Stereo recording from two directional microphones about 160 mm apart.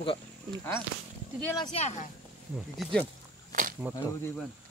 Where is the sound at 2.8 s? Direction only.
5° left (ahead or behind).